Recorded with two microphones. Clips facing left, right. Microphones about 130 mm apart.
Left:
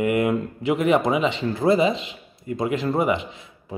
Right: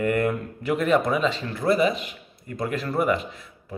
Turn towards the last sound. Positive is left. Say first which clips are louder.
# left 2 dB
turn(degrees=20)  # may be behind; listen again after turning